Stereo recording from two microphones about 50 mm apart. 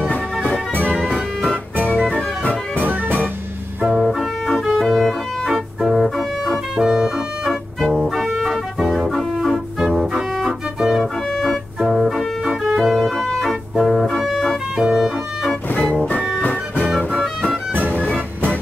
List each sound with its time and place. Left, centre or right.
0.9 s music: centre
2.8 s music: right
3.8 s music: centre
4.1 s music: centre
4.8 s organ: centre
5.8 s music: centre
6.0 s music: centre
6.8 s music: centre
10.3 s organ: centre
12.4 s music: centre
12.8 s organ: centre
14.8 s music: centre